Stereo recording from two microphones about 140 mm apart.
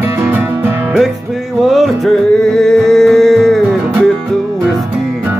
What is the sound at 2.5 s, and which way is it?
Music, 5° left (ahead or behind).